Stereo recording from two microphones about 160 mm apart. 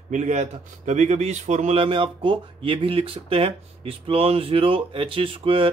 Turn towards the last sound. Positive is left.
turn(degrees=-35)  # may be behind; listen again after turning